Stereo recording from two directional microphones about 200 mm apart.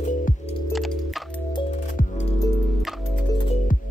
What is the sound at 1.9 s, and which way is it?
Music, 35° left (ahead or behind).